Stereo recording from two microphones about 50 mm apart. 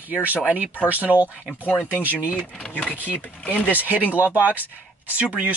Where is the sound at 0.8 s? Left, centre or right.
Right.